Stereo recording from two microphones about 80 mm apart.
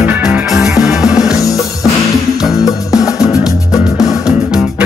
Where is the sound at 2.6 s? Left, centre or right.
Left.